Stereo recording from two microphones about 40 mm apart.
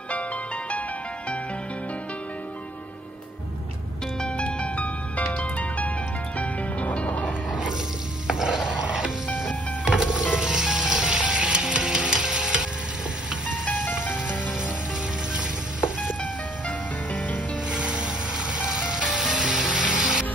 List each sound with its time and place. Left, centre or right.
4.2 s music: left
8.3 s stir: centre
9.8 s music: centre
16.6 s music: left
17.6 s music: right
19.1 s spray: centre